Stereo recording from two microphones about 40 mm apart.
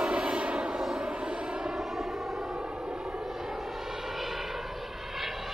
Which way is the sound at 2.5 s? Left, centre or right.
Right.